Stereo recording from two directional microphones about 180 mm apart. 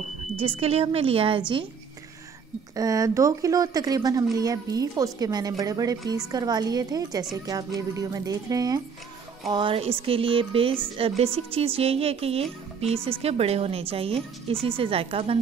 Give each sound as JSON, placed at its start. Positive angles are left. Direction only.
{"t": 0.4, "sound": "a woman's voice", "side_deg": -35}
{"t": 2.7, "sound": "a woman's voice", "side_deg": -20}